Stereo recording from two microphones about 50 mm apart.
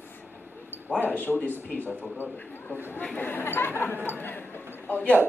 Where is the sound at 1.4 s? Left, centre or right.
Right.